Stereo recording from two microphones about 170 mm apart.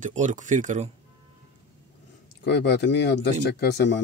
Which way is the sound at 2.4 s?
80° left.